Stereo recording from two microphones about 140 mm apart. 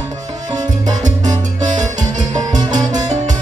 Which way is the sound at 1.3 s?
60° right (ahead or behind).